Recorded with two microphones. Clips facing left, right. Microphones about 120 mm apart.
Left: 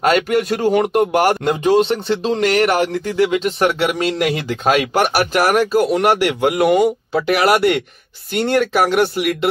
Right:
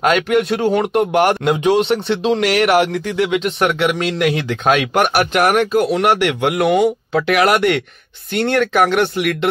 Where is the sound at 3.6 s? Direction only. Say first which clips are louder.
Right 1 dB; 35° left (ahead or behind).